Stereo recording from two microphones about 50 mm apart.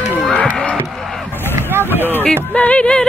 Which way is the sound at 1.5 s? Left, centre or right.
Right.